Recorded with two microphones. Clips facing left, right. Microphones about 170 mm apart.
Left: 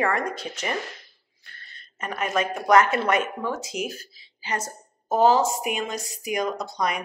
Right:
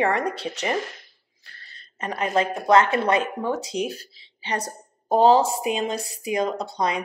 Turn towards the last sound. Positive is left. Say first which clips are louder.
# right 2 dB
turn(degrees=-30)  # may be behind; listen again after turning